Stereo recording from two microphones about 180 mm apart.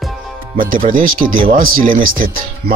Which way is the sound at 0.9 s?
50° right (ahead or behind).